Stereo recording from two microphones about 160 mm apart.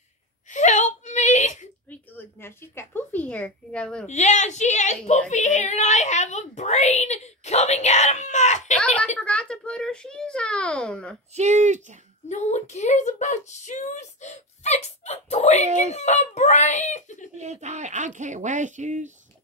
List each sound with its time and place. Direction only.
0.5 s whimper: 50° left (ahead or behind)
1.9 s a woman's voice: 15° left (ahead or behind)
4.1 s speech: 50° left (ahead or behind)
8.7 s a sound: 5° left (ahead or behind)
11.3 s speech: 45° right (ahead or behind)
12.3 s speech: 45° left (ahead or behind)
17.4 s speech: 45° right (ahead or behind)